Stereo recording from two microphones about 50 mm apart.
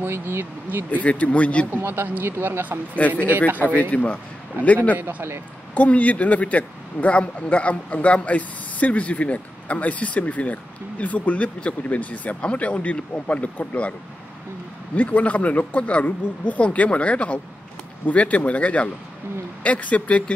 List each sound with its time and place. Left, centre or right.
0.0 s speech: right
0.8 s speech: left
1.7 s speech: right
3.3 s speech: right
3.9 s speech: left
4.6 s speech: right
5.8 s speech: left
15.0 s speech: left